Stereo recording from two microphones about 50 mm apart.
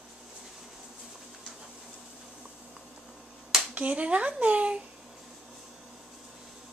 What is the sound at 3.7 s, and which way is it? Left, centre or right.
Speech, right.